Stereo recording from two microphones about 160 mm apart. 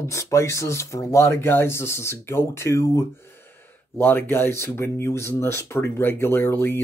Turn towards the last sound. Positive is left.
turn(degrees=15)  # may be behind; listen again after turning